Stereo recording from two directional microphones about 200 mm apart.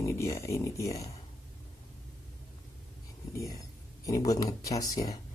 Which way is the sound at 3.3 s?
15° left (ahead or behind).